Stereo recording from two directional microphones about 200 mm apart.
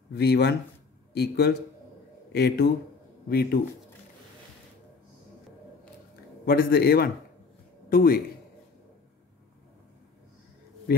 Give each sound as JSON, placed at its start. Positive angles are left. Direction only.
{"t": 0.1, "sound": "a man's voice", "side_deg": 55}
{"t": 6.4, "sound": "a man's voice", "side_deg": 50}